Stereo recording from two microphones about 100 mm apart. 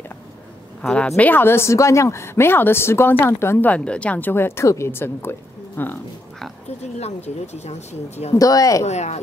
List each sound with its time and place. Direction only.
0.8 s speech: 10° left (ahead or behind); by 3.7 s 25° left (ahead or behind)
3.7 s speech: 10° left (ahead or behind)
6.8 s speech: 90° left
8.4 s speech: 35° left (ahead or behind)
8.8 s speech: 90° left